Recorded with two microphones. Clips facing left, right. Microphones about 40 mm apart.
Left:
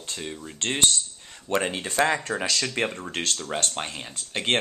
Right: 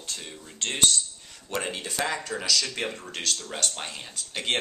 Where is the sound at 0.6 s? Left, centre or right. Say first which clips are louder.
Left 1 dB; left.